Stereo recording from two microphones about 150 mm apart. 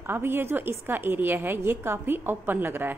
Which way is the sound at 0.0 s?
15° right (ahead or behind).